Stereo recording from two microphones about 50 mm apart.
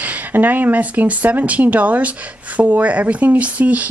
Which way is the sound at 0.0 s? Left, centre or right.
Right.